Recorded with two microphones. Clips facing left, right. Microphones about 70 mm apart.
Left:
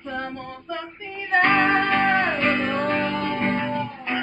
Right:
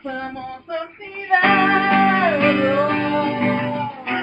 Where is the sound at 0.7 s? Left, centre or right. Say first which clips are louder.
Right 4 dB; right.